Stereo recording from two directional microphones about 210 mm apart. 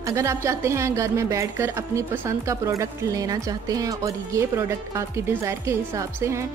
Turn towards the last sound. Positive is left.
turn(degrees=-15)  # may be behind; listen again after turning